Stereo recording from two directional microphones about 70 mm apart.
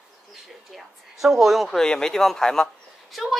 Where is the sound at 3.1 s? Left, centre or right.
Centre.